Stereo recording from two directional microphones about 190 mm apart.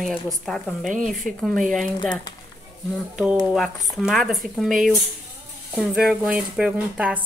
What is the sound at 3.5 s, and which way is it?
A woman's voice, centre (ahead or behind).